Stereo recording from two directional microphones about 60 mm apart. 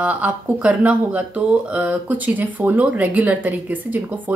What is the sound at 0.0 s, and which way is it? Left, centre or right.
Speech, right.